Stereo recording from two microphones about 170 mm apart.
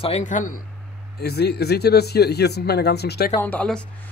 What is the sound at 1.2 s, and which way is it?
Speech, 70° left (ahead or behind).